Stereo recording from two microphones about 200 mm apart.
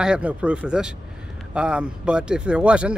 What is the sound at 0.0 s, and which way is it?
Speech, 5° right (ahead or behind).